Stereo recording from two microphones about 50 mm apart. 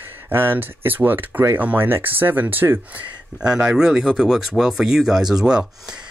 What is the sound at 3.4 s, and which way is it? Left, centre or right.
Speech, centre.